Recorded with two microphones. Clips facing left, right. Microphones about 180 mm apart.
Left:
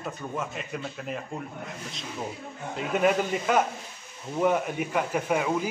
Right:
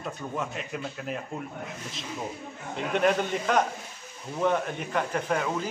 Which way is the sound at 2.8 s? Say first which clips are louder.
Left 1 dB; 5° left (ahead or behind).